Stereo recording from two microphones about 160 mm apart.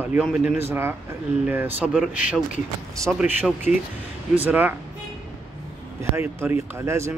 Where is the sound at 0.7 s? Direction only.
15° right (ahead or behind).